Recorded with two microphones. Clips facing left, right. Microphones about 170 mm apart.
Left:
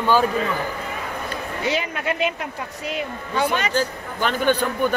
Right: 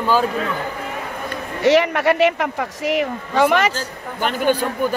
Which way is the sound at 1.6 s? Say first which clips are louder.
Right 11 dB; 75° right (ahead or behind).